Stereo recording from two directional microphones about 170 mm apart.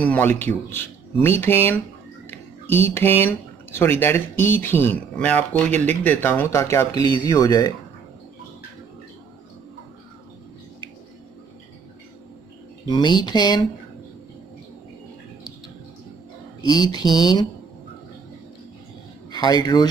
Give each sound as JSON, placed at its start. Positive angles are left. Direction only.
{"t": 0.0, "sound": "speech", "side_deg": 10}
{"t": 2.2, "sound": "a sound", "side_deg": 10}
{"t": 2.9, "sound": "speech", "side_deg": 10}
{"t": 12.8, "sound": "speech", "side_deg": 25}
{"t": 16.8, "sound": "speech", "side_deg": 25}
{"t": 19.3, "sound": "speech", "side_deg": 25}